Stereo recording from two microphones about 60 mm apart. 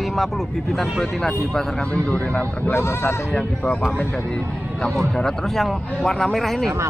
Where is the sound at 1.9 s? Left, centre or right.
Left.